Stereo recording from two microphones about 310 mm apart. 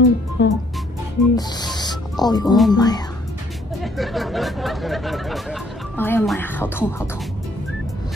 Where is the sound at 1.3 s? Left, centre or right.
Centre.